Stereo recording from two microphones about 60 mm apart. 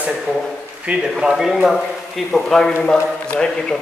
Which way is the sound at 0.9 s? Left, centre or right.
Centre.